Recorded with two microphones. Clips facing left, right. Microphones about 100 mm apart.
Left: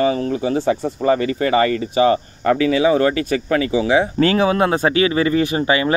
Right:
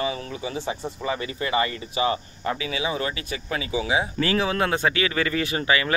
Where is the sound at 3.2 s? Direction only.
55° left (ahead or behind).